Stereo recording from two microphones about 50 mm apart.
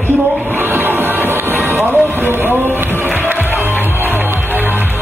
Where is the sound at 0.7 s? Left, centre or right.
Right.